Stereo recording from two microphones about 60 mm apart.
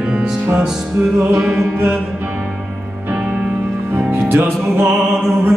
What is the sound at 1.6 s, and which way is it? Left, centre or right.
Music, right.